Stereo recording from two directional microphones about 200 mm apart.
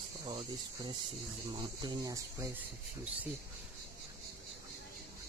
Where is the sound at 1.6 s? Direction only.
20° right (ahead or behind).